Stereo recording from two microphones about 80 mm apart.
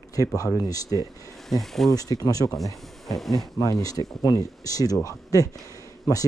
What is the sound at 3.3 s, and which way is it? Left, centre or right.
Speech, left.